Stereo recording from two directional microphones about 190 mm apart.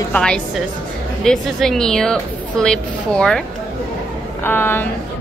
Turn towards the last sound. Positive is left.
turn(degrees=10)  # may be behind; listen again after turning